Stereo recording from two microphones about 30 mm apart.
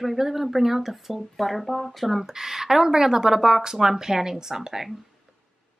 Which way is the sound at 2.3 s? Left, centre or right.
Centre.